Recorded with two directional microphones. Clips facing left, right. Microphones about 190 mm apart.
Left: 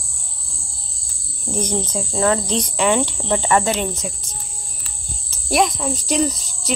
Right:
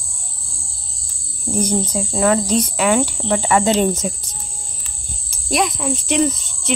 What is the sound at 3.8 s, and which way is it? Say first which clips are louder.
Speech: right 7 dB; 40° right (ahead or behind).